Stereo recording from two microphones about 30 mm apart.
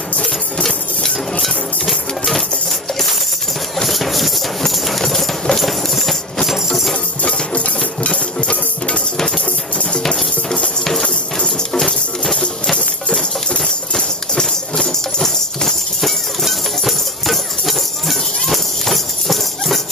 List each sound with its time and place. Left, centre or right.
1.4 s a sound: centre
3.8 s music: centre
5.1 s a sound: centre
7.2 s music: left
10.8 s music: centre
11.3 s music: left
13.9 s clip-clop: centre
16.0 s music: centre